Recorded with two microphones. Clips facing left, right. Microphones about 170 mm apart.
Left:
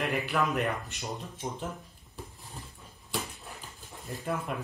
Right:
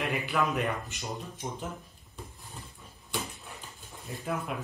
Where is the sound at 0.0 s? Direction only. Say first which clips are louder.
Even; centre (ahead or behind).